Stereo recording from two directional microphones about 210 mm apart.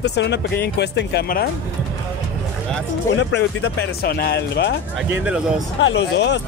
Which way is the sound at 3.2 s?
55° left (ahead or behind).